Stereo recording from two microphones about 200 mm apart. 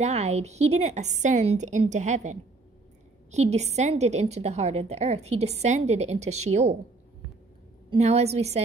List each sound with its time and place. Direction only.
0.0 s a woman's voice: 35° right (ahead or behind)
7.9 s a woman's voice: 35° right (ahead or behind)